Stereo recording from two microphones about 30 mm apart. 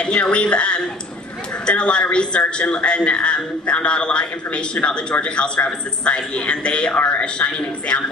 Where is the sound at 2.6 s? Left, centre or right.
Left.